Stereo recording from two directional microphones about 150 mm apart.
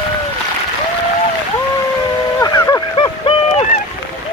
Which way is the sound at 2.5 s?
20° left (ahead or behind).